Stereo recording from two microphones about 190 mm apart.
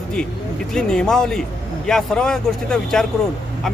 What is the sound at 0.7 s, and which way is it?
Speech, 5° left (ahead or behind).